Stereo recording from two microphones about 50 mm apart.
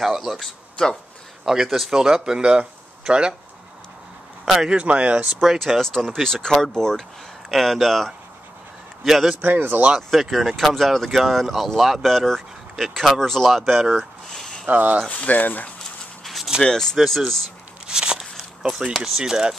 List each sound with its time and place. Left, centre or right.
0.0 s speech: centre
4.6 s speech: right
5.6 s speech: centre
9.4 s speech: right
9.9 s speech: centre
14.3 s a sound: centre
14.7 s speech: right
15.0 s speech: left
16.6 s speech: centre
16.9 s speech: centre
17.8 s a sound: centre
18.6 s speech: centre
19.2 s speech: centre